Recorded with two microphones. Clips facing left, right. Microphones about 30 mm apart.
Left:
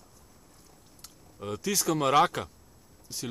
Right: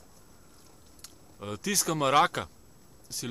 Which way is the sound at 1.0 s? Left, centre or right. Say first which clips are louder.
Left 2 dB; centre.